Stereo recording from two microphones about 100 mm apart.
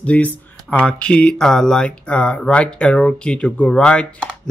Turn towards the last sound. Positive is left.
turn(degrees=10)  # may be behind; listen again after turning